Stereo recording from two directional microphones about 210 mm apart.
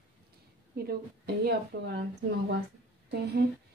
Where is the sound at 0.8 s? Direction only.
45° right (ahead or behind).